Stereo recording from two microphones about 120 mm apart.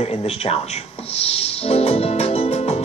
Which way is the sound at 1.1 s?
60° left (ahead or behind).